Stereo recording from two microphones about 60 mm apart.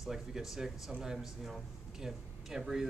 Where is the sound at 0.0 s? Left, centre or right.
Centre.